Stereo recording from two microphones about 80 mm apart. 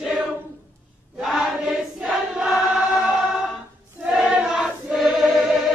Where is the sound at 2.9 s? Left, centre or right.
Centre.